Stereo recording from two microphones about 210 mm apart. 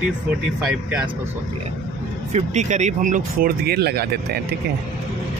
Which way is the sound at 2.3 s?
35° right (ahead or behind).